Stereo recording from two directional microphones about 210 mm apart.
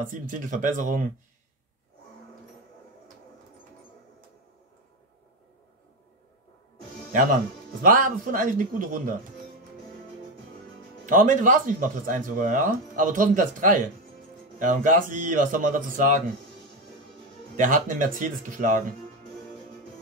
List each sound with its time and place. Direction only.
0.1 s speech: 40° right (ahead or behind)
7.8 s speech: 40° right (ahead or behind)
11.1 s speech: 40° right (ahead or behind)
17.6 s speech: 40° right (ahead or behind)